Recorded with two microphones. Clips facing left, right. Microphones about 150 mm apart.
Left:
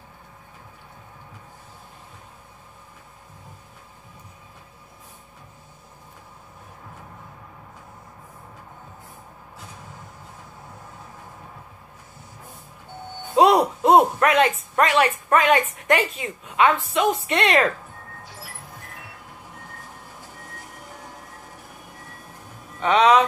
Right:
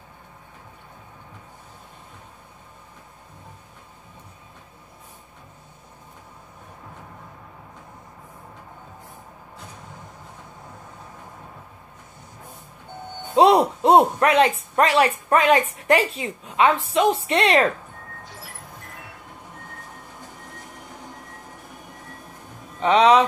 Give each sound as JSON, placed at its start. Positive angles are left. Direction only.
{"t": 13.4, "sound": "a sound", "side_deg": -30}
{"t": 14.8, "sound": "a woman's voice", "side_deg": -35}
{"t": 22.8, "sound": "speech", "side_deg": -30}